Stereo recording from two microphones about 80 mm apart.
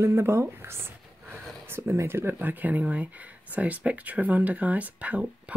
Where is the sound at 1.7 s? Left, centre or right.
Right.